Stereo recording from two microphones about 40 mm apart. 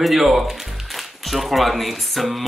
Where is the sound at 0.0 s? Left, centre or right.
Centre.